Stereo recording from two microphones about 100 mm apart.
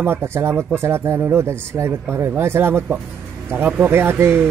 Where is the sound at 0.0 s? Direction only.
25° right (ahead or behind).